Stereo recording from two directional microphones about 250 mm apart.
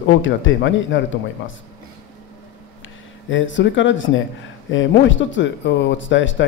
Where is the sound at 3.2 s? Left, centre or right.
Left.